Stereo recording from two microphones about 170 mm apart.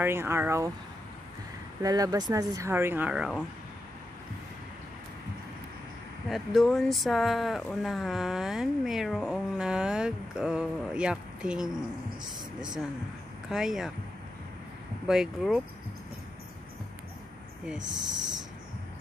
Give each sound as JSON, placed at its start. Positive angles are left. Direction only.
{"t": 0.0, "sound": "speech", "side_deg": -15}
{"t": 1.8, "sound": "speech", "side_deg": -20}
{"t": 6.2, "sound": "speech", "side_deg": 0}
{"t": 13.5, "sound": "speech", "side_deg": -5}
{"t": 15.0, "sound": "speech", "side_deg": 0}